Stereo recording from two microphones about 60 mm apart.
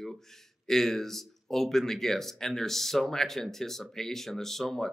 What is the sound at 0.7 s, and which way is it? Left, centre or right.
Speech, centre.